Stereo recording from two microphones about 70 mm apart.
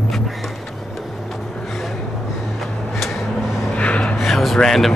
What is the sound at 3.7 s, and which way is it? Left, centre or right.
Gasp, centre.